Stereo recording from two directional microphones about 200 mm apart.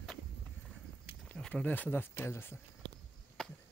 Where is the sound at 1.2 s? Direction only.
5° left (ahead or behind).